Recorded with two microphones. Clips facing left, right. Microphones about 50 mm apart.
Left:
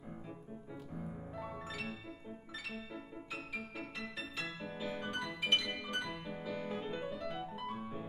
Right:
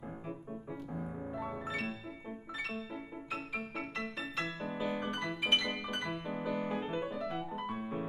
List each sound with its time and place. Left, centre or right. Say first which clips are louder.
0.9 s music: right 4 dB; centre
4.0 s piano: right 4 dB; centre
5.4 s music: right 2 dB; centre
5.7 s music: right 3 dB; centre
6.3 s music: right 6 dB; centre
7.8 s music: right 6 dB; right